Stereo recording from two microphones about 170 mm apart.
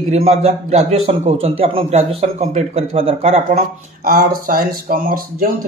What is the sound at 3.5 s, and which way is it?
Speech, 60° right (ahead or behind).